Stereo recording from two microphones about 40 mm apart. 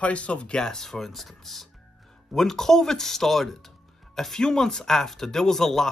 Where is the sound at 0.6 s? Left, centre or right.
Centre.